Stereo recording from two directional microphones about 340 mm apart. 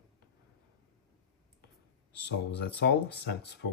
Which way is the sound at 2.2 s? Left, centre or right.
Left.